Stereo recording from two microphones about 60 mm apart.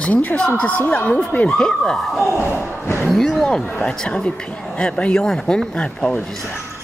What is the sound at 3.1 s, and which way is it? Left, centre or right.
Speech, centre.